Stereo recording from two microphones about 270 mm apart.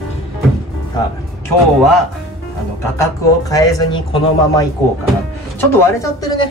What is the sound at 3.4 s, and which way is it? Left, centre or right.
Speech, centre.